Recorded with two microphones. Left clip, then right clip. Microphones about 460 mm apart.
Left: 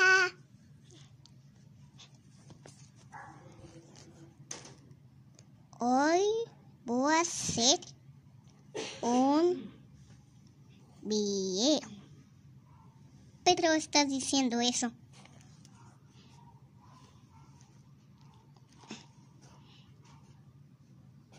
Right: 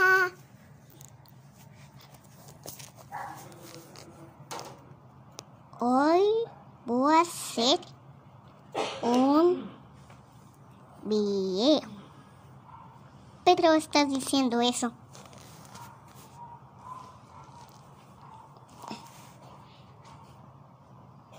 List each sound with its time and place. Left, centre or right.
0.0 s a sound: left
5.8 s a child's voice: left
9.0 s speech: left
11.1 s a woman's voice: left
13.4 s a woman's voice: left